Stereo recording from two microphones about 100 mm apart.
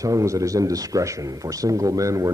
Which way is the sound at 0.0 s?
35° right (ahead or behind).